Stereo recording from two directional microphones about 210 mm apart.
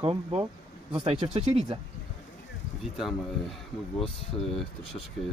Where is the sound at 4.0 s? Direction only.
Centre (ahead or behind).